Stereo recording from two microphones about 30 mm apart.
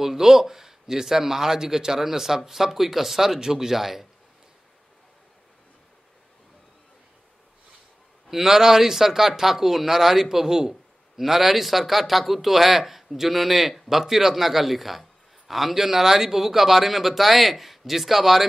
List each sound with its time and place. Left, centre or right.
0.0 s speech: centre
8.3 s speech: centre
11.1 s speech: centre